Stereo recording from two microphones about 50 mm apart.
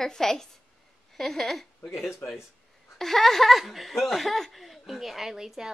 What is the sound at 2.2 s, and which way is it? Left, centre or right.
Speech, left.